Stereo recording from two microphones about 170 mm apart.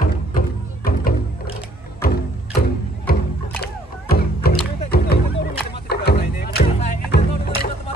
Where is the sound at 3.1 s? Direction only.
60° left (ahead or behind).